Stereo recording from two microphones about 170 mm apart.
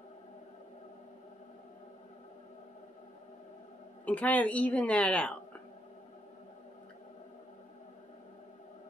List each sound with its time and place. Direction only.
4.0 s a woman's voice: 10° left (ahead or behind)